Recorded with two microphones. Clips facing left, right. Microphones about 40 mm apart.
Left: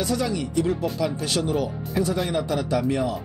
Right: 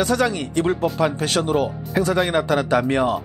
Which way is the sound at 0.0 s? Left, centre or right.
Right.